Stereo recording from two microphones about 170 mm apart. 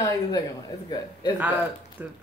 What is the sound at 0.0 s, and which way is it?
Speech, 20° left (ahead or behind).